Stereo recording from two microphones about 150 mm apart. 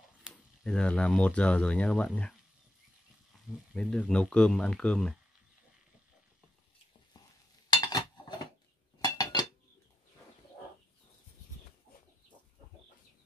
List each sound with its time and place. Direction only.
0.2 s speech: centre (ahead or behind)
3.3 s a sound: centre (ahead or behind)
3.7 s speech: 5° left (ahead or behind)
7.7 s chink: 30° left (ahead or behind)